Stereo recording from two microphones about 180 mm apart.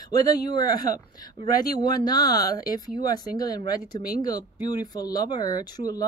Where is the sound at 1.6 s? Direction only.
20° left (ahead or behind).